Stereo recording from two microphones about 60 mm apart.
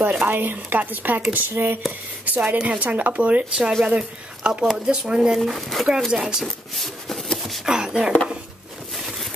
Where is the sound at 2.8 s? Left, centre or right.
Right; by 5.4 s centre.